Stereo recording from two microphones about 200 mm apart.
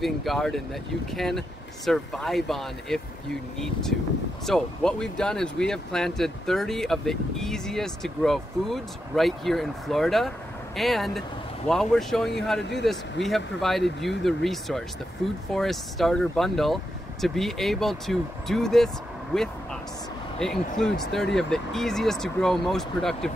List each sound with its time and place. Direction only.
0.0 s speech: centre (ahead or behind)
19.3 s vehicle: 5° left (ahead or behind)
20.3 s speech: 5° left (ahead or behind)